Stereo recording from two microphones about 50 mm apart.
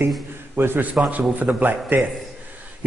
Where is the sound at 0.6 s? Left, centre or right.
Right.